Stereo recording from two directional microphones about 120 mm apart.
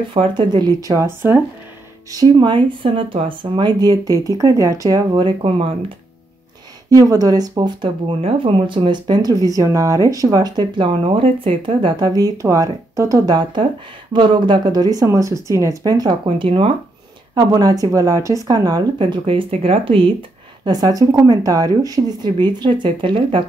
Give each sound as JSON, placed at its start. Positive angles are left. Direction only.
{"t": 0.1, "sound": "speech", "side_deg": -40}
{"t": 2.1, "sound": "speech", "side_deg": -35}
{"t": 6.9, "sound": "speech", "side_deg": -30}
{"t": 17.4, "sound": "speech", "side_deg": -30}